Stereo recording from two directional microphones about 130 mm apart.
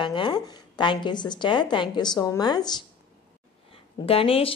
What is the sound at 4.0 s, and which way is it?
Speech, 45° left (ahead or behind).